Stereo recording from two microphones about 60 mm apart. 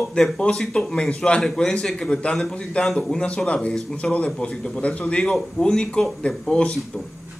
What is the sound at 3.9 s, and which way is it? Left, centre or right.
A man's voice, left.